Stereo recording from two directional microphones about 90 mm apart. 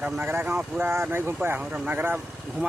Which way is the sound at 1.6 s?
15° right (ahead or behind).